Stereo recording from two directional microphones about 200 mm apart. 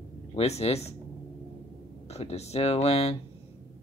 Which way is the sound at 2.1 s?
30° left (ahead or behind).